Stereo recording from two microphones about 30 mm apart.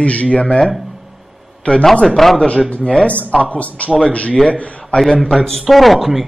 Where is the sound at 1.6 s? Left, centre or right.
Left.